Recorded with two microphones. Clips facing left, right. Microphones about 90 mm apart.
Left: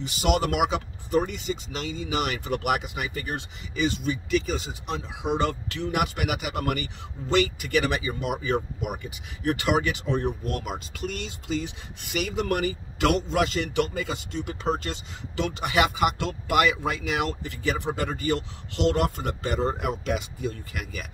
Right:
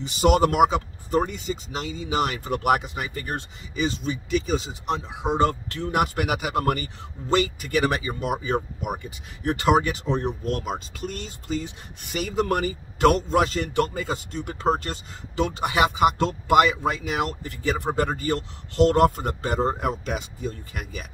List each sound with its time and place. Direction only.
0.0 s speech: 35° right (ahead or behind)